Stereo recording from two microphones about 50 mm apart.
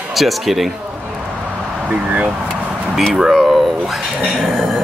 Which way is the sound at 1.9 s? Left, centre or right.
Right.